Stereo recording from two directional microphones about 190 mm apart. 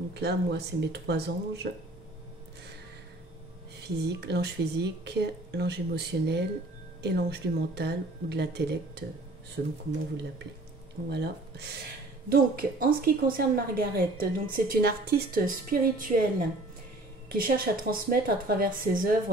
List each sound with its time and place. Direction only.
0.1 s speech: 60° right (ahead or behind)
4.0 s speech: 60° right (ahead or behind)
11.1 s speech: 60° right (ahead or behind)
12.3 s speech: 50° right (ahead or behind)
17.3 s speech: 50° right (ahead or behind)